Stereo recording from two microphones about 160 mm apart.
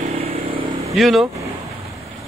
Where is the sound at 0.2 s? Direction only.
35° right (ahead or behind).